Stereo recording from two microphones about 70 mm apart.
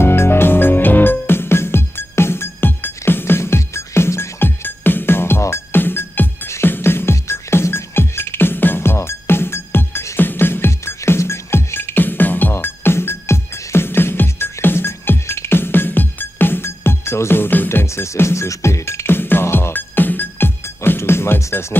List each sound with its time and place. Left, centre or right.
0.0 s music: left
17.8 s music: left